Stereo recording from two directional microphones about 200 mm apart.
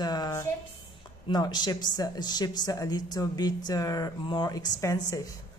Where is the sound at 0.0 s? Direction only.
20° left (ahead or behind).